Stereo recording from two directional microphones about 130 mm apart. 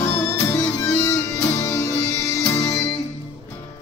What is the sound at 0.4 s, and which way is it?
Music, 20° left (ahead or behind).